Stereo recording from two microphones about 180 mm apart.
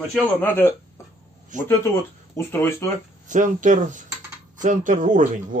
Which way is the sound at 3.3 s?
45° right (ahead or behind).